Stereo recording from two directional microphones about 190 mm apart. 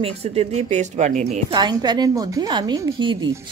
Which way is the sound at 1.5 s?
20° right (ahead or behind).